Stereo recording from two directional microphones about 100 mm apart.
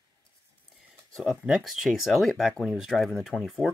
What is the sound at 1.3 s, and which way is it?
Speech, 5° right (ahead or behind).